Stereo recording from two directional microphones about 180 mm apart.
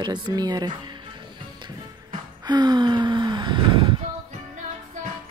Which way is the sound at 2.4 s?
25° right (ahead or behind).